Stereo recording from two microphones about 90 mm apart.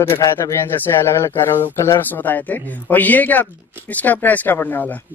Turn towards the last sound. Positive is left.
turn(degrees=20)  # may be behind; listen again after turning